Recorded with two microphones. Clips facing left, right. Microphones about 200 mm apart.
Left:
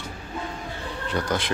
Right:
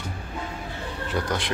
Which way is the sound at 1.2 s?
Centre (ahead or behind).